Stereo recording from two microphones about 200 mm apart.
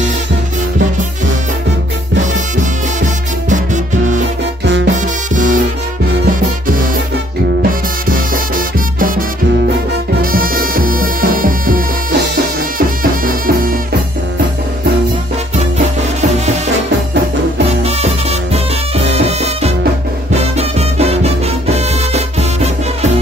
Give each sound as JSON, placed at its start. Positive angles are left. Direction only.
{"t": 3.4, "sound": "music", "side_deg": -40}
{"t": 10.3, "sound": "music", "side_deg": -45}
{"t": 17.8, "sound": "music", "side_deg": -30}